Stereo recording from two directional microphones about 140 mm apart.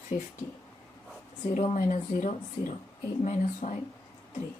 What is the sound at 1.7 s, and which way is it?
Speech, 65° left (ahead or behind).